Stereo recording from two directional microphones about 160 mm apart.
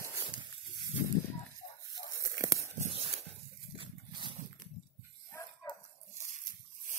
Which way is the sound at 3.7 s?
30° right (ahead or behind).